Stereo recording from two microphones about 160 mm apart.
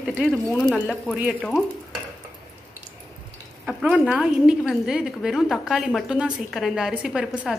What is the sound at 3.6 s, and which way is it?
A woman's voice, 5° right (ahead or behind).